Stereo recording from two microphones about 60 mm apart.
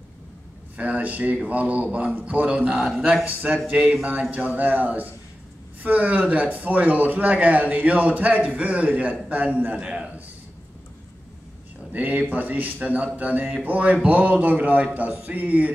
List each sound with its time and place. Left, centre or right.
0.7 s a man's voice: right
4.0 s a man's voice: right
11.9 s a man's voice: right